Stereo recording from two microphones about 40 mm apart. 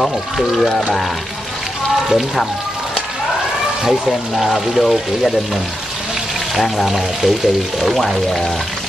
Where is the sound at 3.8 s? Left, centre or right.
Centre.